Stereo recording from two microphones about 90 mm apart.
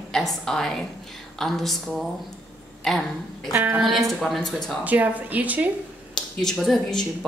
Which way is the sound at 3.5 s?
25° right (ahead or behind).